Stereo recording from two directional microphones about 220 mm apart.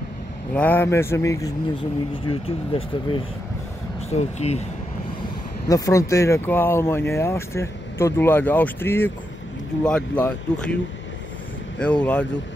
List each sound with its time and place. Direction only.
0.6 s speech: 10° left (ahead or behind)
2.2 s speech: 25° left (ahead or behind)
5.7 s speech: 15° left (ahead or behind)
11.8 s speech: 5° left (ahead or behind)